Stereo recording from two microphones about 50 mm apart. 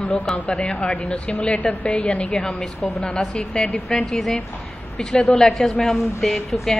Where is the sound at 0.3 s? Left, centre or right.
Centre.